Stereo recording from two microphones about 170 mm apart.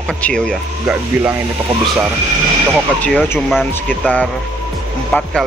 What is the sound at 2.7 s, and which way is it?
Speech, centre (ahead or behind).